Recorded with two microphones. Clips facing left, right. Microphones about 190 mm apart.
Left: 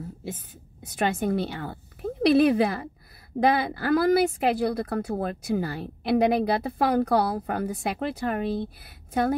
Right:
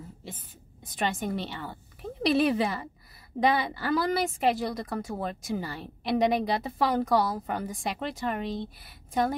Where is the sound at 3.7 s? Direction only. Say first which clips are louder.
Left 6 dB; 55° left (ahead or behind).